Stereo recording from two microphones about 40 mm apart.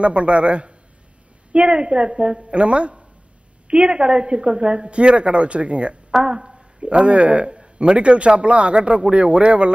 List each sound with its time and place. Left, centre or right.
0.0 s speech: right